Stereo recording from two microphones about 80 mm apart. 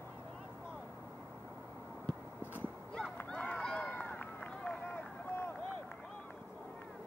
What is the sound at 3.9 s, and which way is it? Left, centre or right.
Run, left.